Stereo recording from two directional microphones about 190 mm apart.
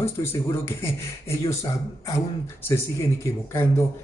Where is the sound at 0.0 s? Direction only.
15° left (ahead or behind).